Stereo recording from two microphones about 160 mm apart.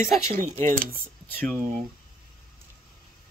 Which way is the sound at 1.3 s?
10° left (ahead or behind).